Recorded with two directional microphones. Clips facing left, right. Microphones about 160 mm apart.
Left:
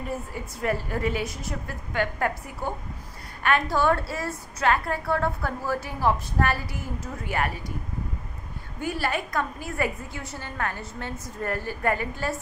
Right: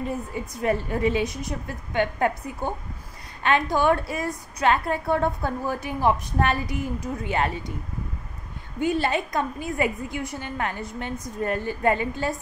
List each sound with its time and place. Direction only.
0.0 s a woman's voice: 20° right (ahead or behind)
8.7 s a woman's voice: 20° right (ahead or behind)